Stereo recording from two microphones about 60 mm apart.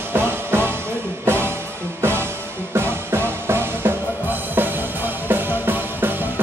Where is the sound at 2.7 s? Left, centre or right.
Right.